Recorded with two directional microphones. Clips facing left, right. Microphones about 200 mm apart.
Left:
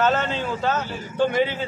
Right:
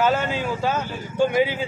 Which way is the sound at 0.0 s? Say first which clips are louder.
Even; 10° right (ahead or behind).